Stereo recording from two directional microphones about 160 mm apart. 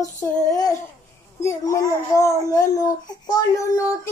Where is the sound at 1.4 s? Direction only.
20° left (ahead or behind).